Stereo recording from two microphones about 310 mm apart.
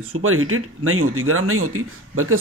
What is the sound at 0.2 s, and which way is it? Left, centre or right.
Speech, right.